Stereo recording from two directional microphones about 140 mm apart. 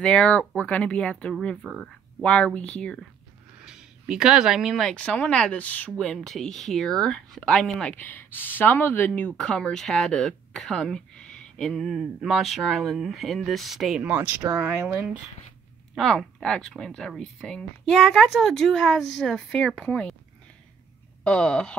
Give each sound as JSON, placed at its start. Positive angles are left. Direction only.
{"t": 0.0, "sound": "speech", "side_deg": 5}
{"t": 2.2, "sound": "speech", "side_deg": 10}
{"t": 3.6, "sound": "speech", "side_deg": -5}
{"t": 14.5, "sound": "speech", "side_deg": -20}
{"t": 15.9, "sound": "speech", "side_deg": 0}
{"t": 21.2, "sound": "speech", "side_deg": 10}